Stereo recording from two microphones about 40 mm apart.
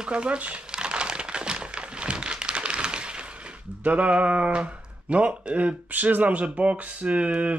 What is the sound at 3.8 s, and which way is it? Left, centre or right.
Speech, right.